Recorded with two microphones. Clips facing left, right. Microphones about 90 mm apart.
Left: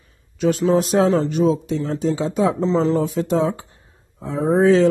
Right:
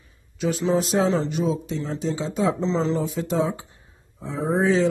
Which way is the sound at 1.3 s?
50° left (ahead or behind).